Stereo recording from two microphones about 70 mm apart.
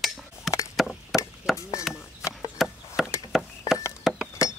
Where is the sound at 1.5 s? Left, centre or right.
Centre.